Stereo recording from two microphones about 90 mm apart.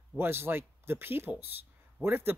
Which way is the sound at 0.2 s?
25° right (ahead or behind).